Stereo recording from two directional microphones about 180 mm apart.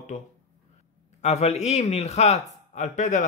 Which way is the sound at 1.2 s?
35° left (ahead or behind).